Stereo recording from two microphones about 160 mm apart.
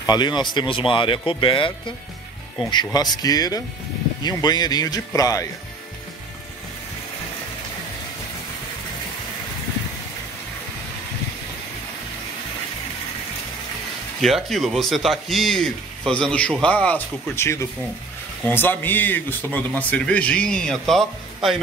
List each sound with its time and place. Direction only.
0.0 s speech: 25° left (ahead or behind)
14.2 s a man's voice: centre (ahead or behind)